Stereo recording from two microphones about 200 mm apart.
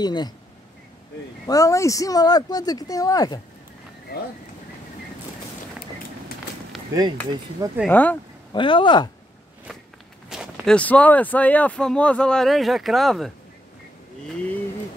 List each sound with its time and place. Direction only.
0.0 s speech: 20° left (ahead or behind)
1.5 s speech: 15° left (ahead or behind)
6.9 s speech: 20° right (ahead or behind)
7.8 s speech: 10° left (ahead or behind)
8.5 s speech: 25° left (ahead or behind)
10.3 s speech: centre (ahead or behind)